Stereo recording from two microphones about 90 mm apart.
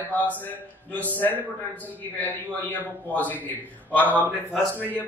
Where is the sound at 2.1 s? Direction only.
20° left (ahead or behind).